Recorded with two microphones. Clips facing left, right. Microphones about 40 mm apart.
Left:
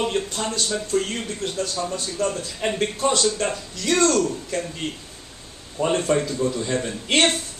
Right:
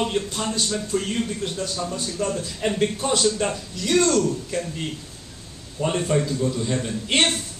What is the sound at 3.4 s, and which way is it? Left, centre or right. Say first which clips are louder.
Speech: even; centre.